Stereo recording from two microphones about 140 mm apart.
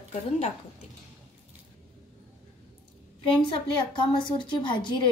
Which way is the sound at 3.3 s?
35° left (ahead or behind).